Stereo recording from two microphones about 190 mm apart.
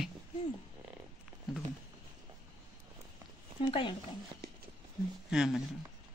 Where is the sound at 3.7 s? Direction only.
25° left (ahead or behind).